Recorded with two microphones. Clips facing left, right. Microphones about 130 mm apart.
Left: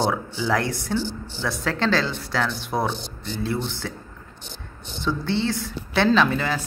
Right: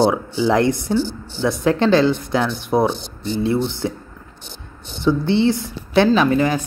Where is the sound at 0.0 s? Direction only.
15° right (ahead or behind).